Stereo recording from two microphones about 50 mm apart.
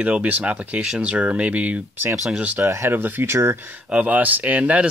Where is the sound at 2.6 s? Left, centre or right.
Right.